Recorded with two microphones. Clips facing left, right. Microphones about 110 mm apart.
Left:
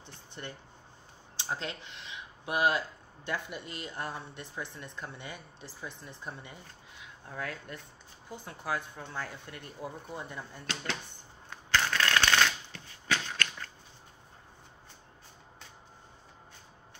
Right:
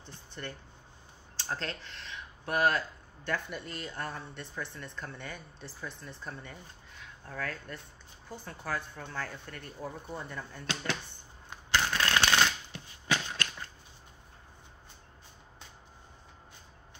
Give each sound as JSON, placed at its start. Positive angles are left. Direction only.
{"t": 0.0, "sound": "speech", "side_deg": 20}
{"t": 11.5, "sound": "shuffling cards", "side_deg": -15}